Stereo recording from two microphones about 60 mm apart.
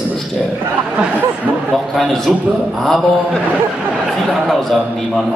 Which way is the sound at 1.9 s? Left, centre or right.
Centre.